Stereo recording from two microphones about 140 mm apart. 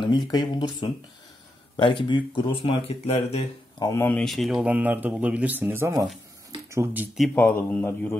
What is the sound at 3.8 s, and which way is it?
Speech, 15° left (ahead or behind).